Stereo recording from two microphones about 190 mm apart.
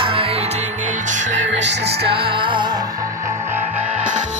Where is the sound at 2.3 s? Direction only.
25° right (ahead or behind).